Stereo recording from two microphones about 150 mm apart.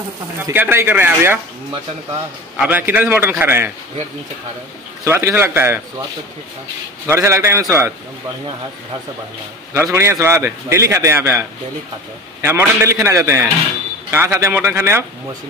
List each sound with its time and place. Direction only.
0.5 s a man's voice: 15° right (ahead or behind)
2.5 s a man's voice: 10° right (ahead or behind)
5.0 s a man's voice: 15° right (ahead or behind)
7.1 s a man's voice: 20° right (ahead or behind)
9.8 s a man's voice: 20° right (ahead or behind)